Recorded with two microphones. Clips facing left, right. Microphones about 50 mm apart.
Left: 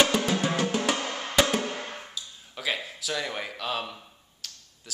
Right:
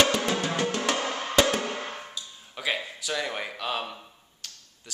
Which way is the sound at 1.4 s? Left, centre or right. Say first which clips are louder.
Even; centre.